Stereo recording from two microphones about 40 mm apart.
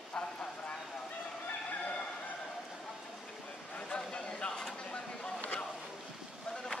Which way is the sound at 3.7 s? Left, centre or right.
Left.